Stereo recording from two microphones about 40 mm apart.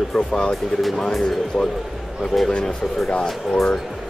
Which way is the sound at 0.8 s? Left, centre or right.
Centre.